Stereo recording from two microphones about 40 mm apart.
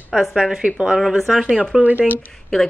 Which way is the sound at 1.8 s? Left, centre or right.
Right.